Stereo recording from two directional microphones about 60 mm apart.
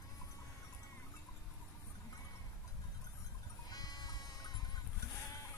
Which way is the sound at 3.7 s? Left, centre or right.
Left.